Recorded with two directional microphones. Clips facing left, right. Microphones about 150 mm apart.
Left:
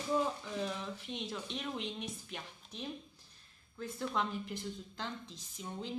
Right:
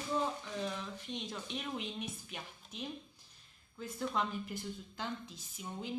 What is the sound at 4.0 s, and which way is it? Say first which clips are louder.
A woman's voice: even; centre (ahead or behind).